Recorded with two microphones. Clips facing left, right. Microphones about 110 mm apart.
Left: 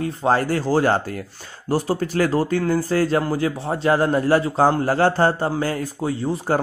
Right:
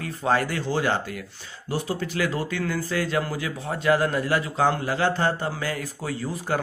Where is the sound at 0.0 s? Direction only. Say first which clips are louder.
Left 4 dB; 30° left (ahead or behind).